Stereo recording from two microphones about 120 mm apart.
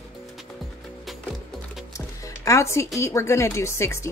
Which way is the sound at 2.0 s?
25° left (ahead or behind).